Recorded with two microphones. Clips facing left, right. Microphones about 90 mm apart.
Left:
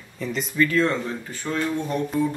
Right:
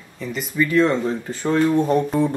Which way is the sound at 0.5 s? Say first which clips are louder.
Right 4 dB; 15° right (ahead or behind).